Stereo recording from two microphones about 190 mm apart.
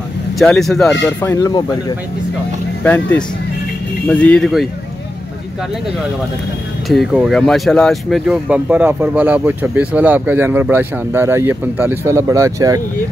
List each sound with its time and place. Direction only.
0.4 s speech: centre (ahead or behind)
1.2 s speech: 15° left (ahead or behind)
2.8 s speech: 10° left (ahead or behind)
6.9 s speech: centre (ahead or behind); by 12.8 s 15° right (ahead or behind)